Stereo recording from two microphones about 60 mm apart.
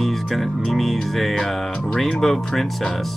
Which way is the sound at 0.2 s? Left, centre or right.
Centre.